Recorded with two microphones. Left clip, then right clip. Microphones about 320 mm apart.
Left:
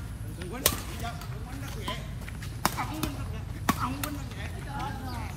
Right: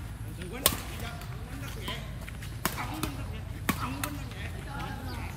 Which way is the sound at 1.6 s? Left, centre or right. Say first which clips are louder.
Left 2 dB; centre.